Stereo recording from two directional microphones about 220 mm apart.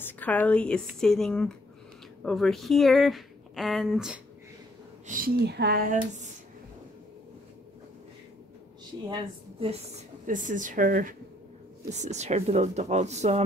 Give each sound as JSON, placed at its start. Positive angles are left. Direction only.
{"t": 0.0, "sound": "speech", "side_deg": 5}
{"t": 5.0, "sound": "speech", "side_deg": -40}
{"t": 9.1, "sound": "a woman's voice", "side_deg": -25}
{"t": 10.2, "sound": "speech", "side_deg": -35}